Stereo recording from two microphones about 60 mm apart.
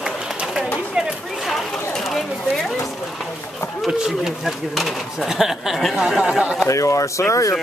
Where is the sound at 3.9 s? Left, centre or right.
Centre.